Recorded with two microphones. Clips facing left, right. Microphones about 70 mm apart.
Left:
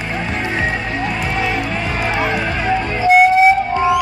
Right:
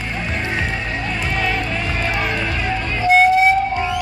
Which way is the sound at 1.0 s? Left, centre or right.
Centre.